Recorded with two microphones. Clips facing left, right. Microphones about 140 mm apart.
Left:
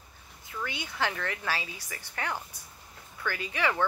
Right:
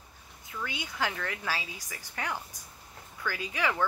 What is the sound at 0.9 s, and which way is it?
Speech, 10° right (ahead or behind).